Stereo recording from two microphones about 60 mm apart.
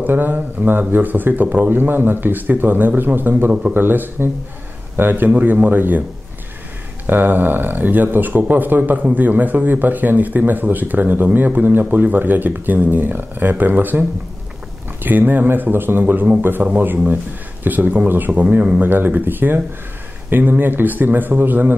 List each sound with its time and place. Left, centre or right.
0.0 s speech: right
7.1 s speech: right
15.0 s speech: right